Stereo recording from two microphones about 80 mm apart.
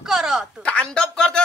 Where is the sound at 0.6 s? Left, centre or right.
Centre.